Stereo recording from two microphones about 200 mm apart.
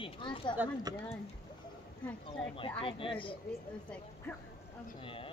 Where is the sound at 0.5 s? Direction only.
10° right (ahead or behind).